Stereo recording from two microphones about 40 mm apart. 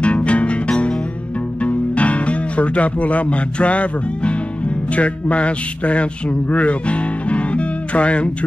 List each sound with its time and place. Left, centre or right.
0.0 s music: left
1.6 s speech: left
4.9 s a sound: left
6.5 s music: left